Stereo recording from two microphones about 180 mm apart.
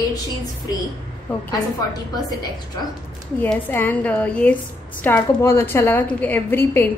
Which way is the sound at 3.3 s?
10° left (ahead or behind).